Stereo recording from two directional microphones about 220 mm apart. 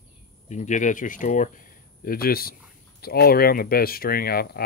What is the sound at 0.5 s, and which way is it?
Speech, 35° left (ahead or behind).